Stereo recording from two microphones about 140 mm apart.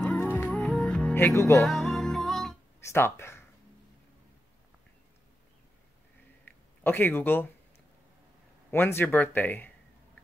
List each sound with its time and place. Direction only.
0.0 s music: 10° left (ahead or behind)
0.6 s music: 5° left (ahead or behind); by 1.7 s 20° left (ahead or behind)
1.7 s music: centre (ahead or behind)
2.8 s speech: 20° left (ahead or behind)
6.4 s a sound: 15° left (ahead or behind)
8.6 s speech: 15° left (ahead or behind)